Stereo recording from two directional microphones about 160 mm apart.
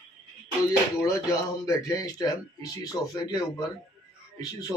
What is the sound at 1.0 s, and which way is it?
Speech, 20° left (ahead or behind).